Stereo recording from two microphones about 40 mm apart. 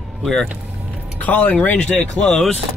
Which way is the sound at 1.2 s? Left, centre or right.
Left.